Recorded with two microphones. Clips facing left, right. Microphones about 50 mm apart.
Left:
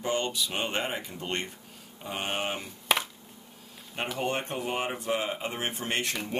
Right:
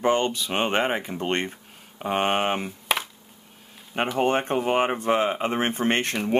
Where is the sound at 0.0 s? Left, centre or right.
Right.